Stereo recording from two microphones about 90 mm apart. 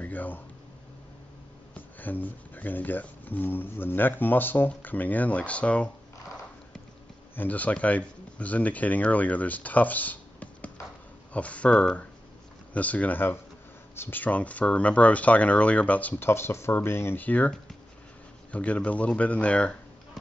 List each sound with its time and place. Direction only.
0.0 s a sound: 20° left (ahead or behind)
1.7 s speech: 20° left (ahead or behind)
7.3 s speech: 20° left (ahead or behind)